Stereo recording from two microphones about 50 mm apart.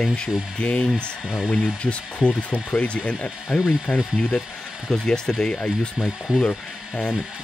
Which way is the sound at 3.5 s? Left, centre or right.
Centre.